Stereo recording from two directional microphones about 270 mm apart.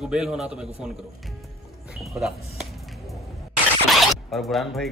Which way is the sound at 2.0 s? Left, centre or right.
Centre.